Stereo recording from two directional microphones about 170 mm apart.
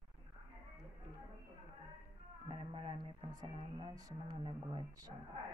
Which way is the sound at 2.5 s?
30° right (ahead or behind).